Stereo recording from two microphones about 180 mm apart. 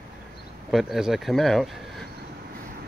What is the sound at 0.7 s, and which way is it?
Speech, centre (ahead or behind).